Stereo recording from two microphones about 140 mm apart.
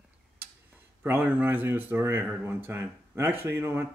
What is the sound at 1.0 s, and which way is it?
Speech, 15° right (ahead or behind).